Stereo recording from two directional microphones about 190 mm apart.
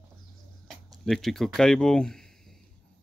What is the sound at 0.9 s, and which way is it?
Speech, centre (ahead or behind).